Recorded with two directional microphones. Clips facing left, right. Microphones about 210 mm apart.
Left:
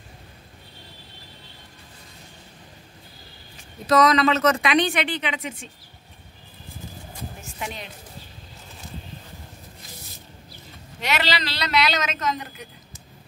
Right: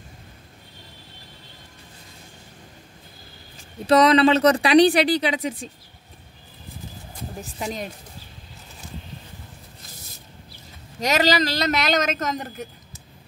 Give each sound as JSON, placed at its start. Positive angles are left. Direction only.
{"t": 3.8, "sound": "speech", "side_deg": -30}
{"t": 7.4, "sound": "speech", "side_deg": -35}
{"t": 11.0, "sound": "a woman's voice", "side_deg": -40}